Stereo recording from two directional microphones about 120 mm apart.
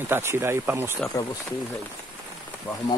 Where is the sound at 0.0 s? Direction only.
20° right (ahead or behind).